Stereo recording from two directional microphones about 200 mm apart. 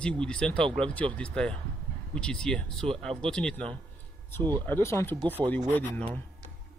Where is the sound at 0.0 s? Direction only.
5° left (ahead or behind).